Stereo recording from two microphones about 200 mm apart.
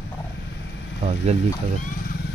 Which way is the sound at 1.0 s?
35° right (ahead or behind).